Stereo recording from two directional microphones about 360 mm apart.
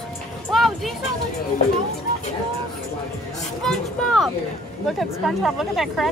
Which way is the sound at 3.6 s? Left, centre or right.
Centre.